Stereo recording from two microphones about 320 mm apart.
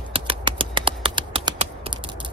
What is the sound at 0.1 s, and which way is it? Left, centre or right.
Typing, centre.